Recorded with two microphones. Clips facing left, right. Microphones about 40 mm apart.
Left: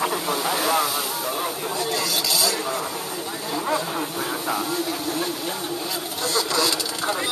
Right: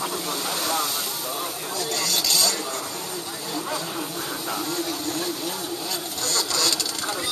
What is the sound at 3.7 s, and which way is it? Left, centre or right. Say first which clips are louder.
Speech: left 7 dB; left.